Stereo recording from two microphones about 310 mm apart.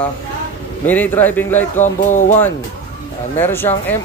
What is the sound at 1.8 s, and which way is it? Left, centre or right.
Speech, left.